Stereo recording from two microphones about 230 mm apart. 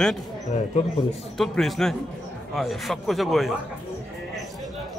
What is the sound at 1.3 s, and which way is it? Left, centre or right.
Speech, centre.